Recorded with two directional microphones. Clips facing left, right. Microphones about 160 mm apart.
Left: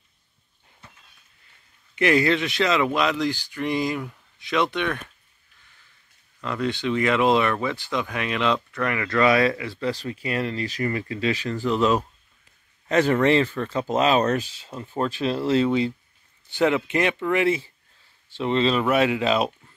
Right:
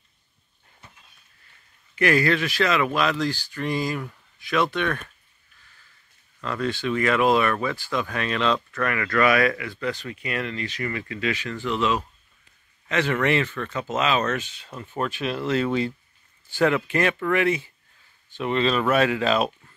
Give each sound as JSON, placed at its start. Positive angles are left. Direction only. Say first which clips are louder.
{"t": 2.0, "sound": "speech", "louder": "left 1 dB", "side_deg": 20}
{"t": 6.4, "sound": "speech", "louder": "left 1 dB", "side_deg": 15}